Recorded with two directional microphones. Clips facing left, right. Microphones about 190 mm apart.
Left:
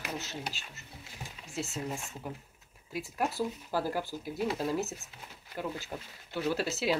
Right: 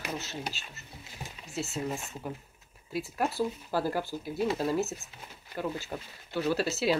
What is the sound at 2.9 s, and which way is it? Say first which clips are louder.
Speech: right 2 dB; 15° left (ahead or behind).